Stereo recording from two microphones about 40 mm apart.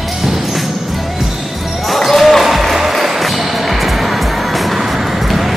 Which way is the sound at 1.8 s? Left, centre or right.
Centre.